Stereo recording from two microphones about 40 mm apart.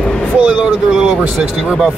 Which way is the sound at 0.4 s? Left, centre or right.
Right.